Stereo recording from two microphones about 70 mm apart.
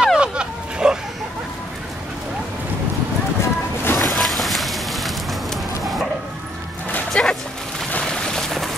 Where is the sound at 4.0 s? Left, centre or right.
Centre.